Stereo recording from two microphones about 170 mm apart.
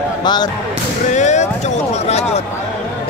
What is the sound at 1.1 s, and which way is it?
Speech, 45° left (ahead or behind).